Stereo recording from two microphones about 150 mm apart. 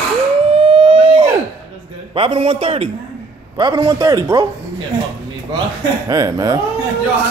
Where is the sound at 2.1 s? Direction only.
40° right (ahead or behind).